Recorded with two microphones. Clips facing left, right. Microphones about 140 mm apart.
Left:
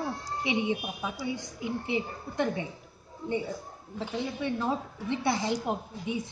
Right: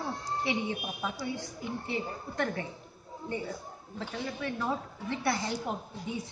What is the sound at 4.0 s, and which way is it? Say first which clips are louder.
A woman's voice: left 4 dB; 20° left (ahead or behind).